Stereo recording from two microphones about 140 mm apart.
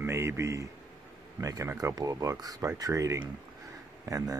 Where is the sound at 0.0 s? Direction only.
20° right (ahead or behind).